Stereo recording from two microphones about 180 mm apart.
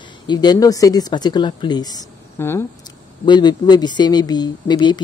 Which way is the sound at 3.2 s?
25° left (ahead or behind).